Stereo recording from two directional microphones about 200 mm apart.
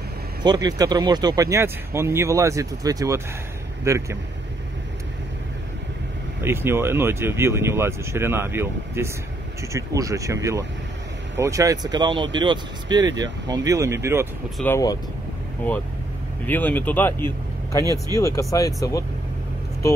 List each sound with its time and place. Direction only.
0.4 s speech: 20° right (ahead or behind)
6.4 s speech: 10° right (ahead or behind)
14.6 s speech: 15° left (ahead or behind)
16.4 s speech: 10° left (ahead or behind)